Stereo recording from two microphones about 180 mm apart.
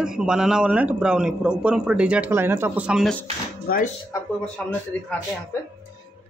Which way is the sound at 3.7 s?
55° left (ahead or behind).